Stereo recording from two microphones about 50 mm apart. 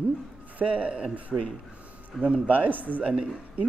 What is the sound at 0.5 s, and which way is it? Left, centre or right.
Speech, right.